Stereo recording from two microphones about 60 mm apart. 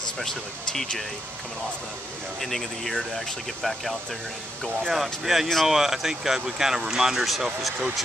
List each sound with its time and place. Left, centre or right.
0.2 s speech: centre
2.4 s speech: centre